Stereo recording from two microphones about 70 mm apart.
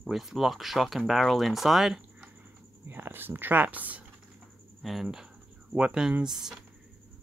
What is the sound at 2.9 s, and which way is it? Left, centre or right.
Speech, right.